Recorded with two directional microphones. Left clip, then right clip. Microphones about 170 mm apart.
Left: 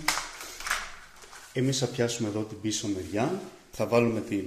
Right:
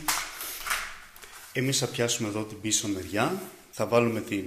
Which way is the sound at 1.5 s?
20° left (ahead or behind).